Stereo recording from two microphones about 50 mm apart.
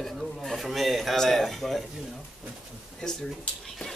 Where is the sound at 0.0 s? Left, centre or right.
Centre.